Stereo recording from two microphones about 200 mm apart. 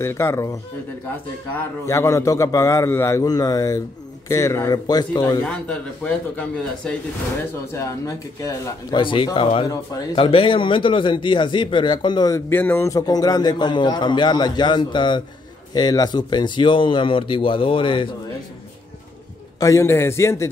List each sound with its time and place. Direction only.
0.0 s a man's voice: 10° left (ahead or behind)
1.9 s a man's voice: 15° left (ahead or behind)
5.4 s a man's voice: 5° left (ahead or behind); by 18.1 s 25° left (ahead or behind)
19.6 s a man's voice: 15° left (ahead or behind)